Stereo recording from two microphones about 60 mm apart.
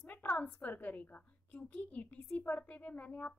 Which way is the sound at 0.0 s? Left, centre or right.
Left.